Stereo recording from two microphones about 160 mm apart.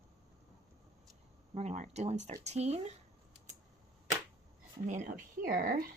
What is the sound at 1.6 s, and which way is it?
Speech, 45° right (ahead or behind).